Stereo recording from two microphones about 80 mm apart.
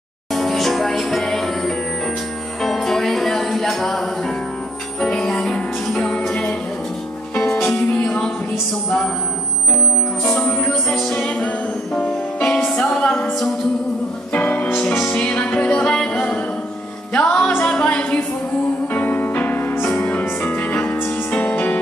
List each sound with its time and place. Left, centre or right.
0.3 s music: centre
10.4 s music: left
10.7 s music: centre
11.2 s music: centre
12.4 s music: centre
14.3 s music: centre